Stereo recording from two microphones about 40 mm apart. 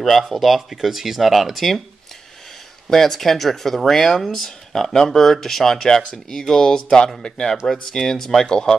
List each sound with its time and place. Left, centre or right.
0.3 s speech: centre
2.9 s speech: centre
7.2 s speech: left
7.6 s speech: centre
8.5 s speech: left